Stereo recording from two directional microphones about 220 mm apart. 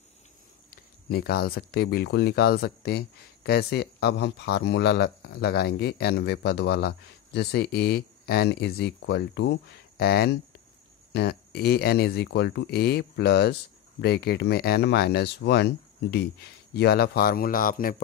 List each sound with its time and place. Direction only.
0.7 s speech: 45° left (ahead or behind)